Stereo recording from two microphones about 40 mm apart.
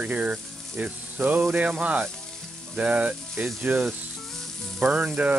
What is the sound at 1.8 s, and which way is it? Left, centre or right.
Speech, right.